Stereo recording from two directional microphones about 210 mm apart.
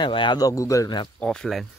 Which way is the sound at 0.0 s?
20° left (ahead or behind).